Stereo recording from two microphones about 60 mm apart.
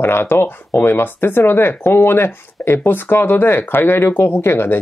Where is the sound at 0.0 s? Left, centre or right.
Left.